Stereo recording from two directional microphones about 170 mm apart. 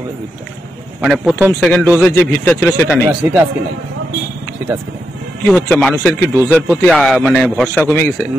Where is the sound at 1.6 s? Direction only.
10° left (ahead or behind).